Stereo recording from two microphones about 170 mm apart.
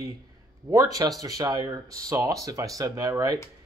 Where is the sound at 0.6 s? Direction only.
15° right (ahead or behind).